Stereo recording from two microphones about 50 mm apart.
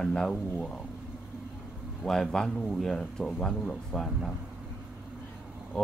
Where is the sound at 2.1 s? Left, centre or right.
Centre.